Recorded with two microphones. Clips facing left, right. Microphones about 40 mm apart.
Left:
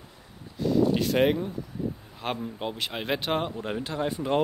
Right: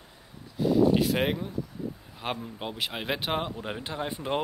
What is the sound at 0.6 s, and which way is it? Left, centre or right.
Speech, centre.